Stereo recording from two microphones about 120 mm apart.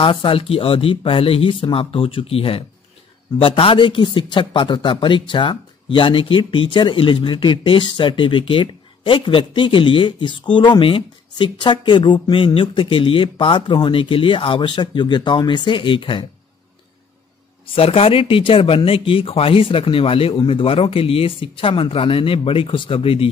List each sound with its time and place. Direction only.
0.0 s speech: 45° left (ahead or behind)
17.7 s speech: 55° left (ahead or behind)